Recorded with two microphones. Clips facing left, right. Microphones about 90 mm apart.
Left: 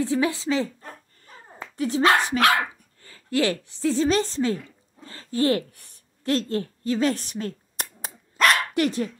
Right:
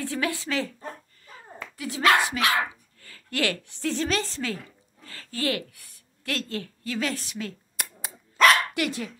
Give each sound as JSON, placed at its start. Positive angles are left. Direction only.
{"t": 0.0, "sound": "speech", "side_deg": 20}
{"t": 1.8, "sound": "a woman's voice", "side_deg": 30}
{"t": 4.1, "sound": "a woman's voice", "side_deg": 30}
{"t": 7.2, "sound": "a sound", "side_deg": 45}
{"t": 8.4, "sound": "dog", "side_deg": 0}
{"t": 8.7, "sound": "speech", "side_deg": 35}